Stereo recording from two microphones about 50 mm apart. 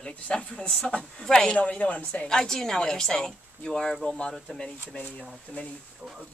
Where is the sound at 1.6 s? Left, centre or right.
Left.